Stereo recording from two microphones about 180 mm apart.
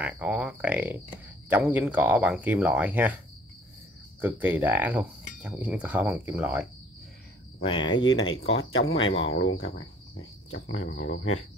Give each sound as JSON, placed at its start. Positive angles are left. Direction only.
{"t": 0.0, "sound": "speech", "side_deg": -5}
{"t": 4.2, "sound": "speech", "side_deg": -10}
{"t": 7.6, "sound": "cricket", "side_deg": 25}
{"t": 8.0, "sound": "speech", "side_deg": 90}